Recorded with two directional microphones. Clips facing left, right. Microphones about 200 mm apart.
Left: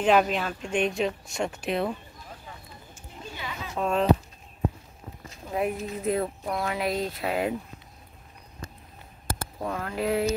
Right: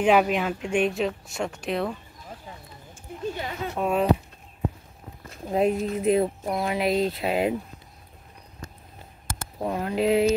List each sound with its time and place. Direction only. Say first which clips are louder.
0.0 s a woman's voice: right 2 dB; 10° right (ahead or behind)
2.9 s a sound: right 11 dB; 50° right (ahead or behind)
3.7 s speech: right 1 dB; 10° right (ahead or behind)
5.5 s speech: right 6 dB; 25° right (ahead or behind)
9.6 s speech: right 6 dB; 20° right (ahead or behind)